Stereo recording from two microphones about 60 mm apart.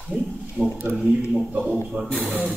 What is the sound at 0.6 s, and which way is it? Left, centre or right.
Speech, right.